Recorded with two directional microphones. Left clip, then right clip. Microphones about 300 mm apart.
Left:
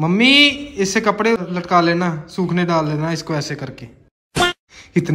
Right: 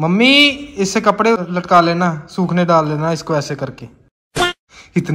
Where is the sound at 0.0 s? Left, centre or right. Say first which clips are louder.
Right 1 dB; centre.